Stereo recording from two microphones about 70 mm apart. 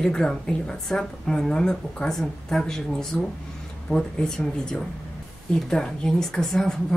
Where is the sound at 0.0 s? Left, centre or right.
Centre.